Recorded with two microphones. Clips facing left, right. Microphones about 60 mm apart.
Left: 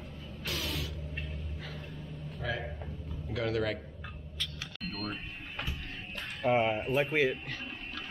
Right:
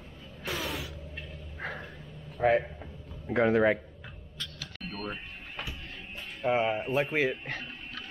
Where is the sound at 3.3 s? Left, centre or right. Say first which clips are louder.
Right 8 dB; right.